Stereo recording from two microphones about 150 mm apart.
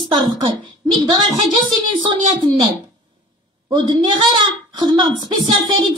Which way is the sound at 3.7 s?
30° right (ahead or behind).